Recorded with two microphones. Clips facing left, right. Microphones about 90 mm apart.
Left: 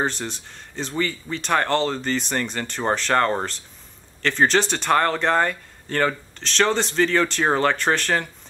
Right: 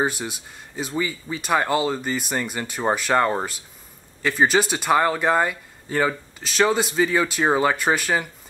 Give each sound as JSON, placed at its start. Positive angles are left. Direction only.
{"t": 0.0, "sound": "speech", "side_deg": -10}